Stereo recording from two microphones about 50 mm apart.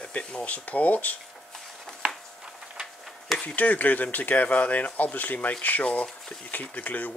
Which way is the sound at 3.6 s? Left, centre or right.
Left.